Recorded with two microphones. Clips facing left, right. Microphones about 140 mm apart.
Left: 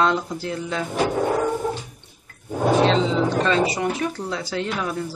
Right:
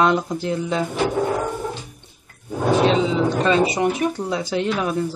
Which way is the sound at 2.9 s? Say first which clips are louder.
Right 1 dB; 10° right (ahead or behind).